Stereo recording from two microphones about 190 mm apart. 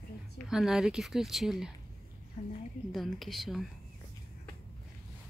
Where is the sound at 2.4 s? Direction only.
35° left (ahead or behind).